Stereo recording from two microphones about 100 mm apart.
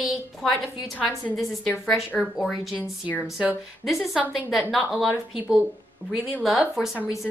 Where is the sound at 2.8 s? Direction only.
15° left (ahead or behind).